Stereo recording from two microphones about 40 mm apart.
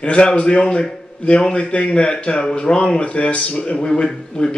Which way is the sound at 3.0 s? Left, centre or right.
Left.